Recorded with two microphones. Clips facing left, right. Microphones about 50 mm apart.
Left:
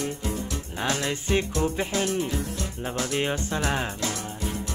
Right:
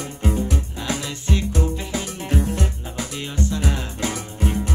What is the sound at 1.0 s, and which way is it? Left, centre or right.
Music, left.